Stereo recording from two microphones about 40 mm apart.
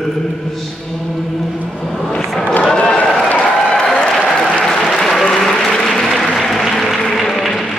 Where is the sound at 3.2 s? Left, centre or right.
Left.